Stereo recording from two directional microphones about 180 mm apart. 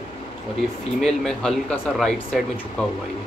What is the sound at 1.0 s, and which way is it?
Speech, 5° left (ahead or behind).